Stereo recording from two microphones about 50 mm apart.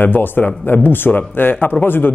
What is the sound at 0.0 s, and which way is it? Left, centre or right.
Speech, left.